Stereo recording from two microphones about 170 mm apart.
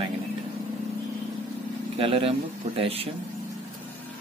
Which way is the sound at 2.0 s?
35° right (ahead or behind).